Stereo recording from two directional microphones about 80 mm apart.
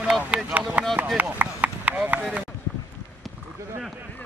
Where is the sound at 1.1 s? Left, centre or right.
Centre.